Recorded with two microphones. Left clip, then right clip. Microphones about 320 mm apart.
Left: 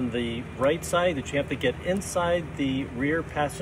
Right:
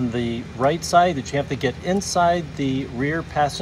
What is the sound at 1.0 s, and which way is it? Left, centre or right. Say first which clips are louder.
Speech: right 4 dB; right.